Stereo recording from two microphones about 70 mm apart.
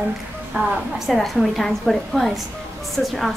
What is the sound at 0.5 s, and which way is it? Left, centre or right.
A woman's voice, centre.